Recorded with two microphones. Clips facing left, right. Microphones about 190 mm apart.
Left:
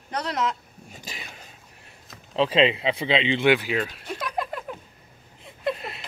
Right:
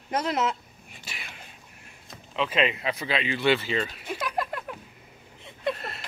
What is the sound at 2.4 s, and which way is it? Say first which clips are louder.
Speech: left 5 dB; 30° left (ahead or behind).